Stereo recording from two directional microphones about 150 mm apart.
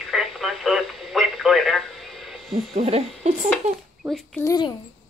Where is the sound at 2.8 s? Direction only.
45° right (ahead or behind).